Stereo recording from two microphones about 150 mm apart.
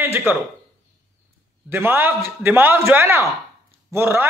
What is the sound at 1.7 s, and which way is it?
A man's voice, 15° right (ahead or behind).